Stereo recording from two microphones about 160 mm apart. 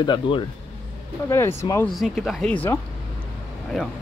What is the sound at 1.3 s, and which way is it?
Speech, 15° left (ahead or behind).